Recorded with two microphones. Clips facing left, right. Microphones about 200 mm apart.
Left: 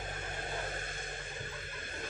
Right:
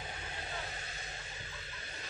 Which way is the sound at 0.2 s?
50° left (ahead or behind).